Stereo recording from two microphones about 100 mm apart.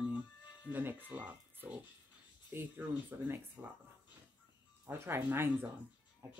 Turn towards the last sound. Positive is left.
turn(degrees=-25)  # may be behind; listen again after turning